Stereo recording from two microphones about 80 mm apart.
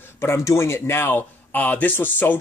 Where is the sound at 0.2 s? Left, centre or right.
Left.